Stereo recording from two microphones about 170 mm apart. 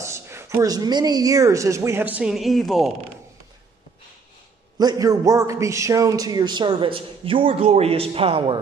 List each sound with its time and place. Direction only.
0.0 s speech: 15° right (ahead or behind); by 2.9 s centre (ahead or behind)
4.7 s a man's voice: 20° right (ahead or behind)